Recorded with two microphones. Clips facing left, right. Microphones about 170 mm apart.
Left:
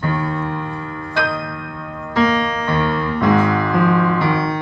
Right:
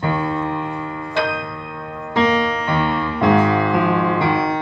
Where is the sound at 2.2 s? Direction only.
10° right (ahead or behind).